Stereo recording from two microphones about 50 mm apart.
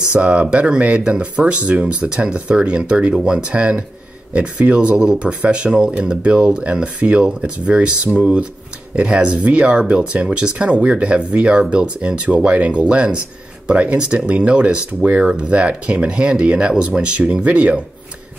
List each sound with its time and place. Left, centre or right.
0.1 s speech: right